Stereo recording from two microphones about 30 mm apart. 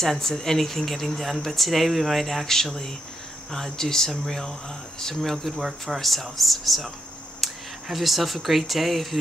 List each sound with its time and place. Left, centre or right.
0.0 s speech: centre
2.4 s speech: centre
5.6 s speech: centre
5.9 s speech: centre